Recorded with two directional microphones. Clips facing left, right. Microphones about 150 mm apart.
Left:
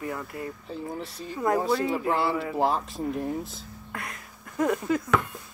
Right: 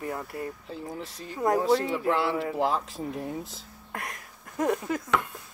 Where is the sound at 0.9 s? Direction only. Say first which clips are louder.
Left 2 dB; 90° right.